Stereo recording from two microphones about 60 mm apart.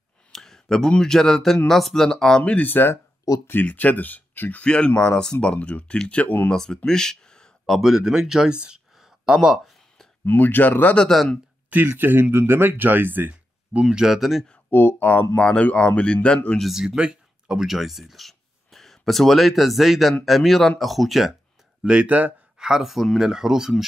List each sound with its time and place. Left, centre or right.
0.3 s speech: centre
2.4 s speech: left
3.3 s speech: left
3.6 s speech: left
6.5 s speech: centre
7.6 s speech: centre
10.2 s speech: left
11.1 s speech: centre
11.7 s speech: right
13.8 s speech: centre
14.7 s speech: left; by 16.3 s centre
16.5 s speech: centre
21.8 s speech: centre
22.6 s speech: centre